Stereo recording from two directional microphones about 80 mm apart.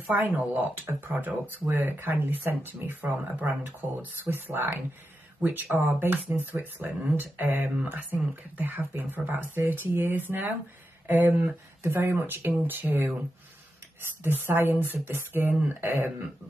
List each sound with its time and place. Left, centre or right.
0.1 s speech: right
14.2 s speech: right